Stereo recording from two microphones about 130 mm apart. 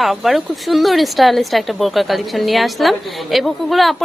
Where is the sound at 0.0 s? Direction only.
Centre (ahead or behind).